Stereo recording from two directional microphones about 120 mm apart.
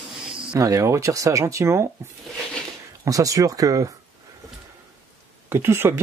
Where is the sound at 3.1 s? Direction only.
30° right (ahead or behind).